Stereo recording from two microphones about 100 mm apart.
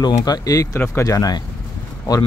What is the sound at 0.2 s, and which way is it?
Speech, 40° left (ahead or behind).